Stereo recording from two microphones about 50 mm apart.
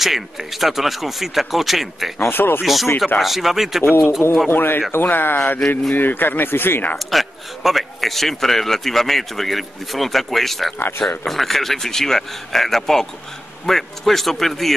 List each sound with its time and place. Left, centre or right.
0.0 s a man's voice: centre
2.1 s speech: left
2.6 s a man's voice: centre
4.5 s speech: left
7.1 s a man's voice: centre
10.8 s speech: left
11.2 s a man's voice: centre